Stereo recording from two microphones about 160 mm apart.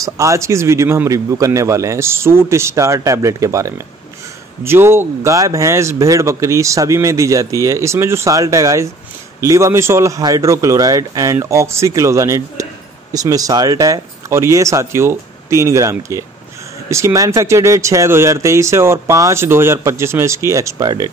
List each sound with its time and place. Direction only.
0.0 s speech: 20° right (ahead or behind)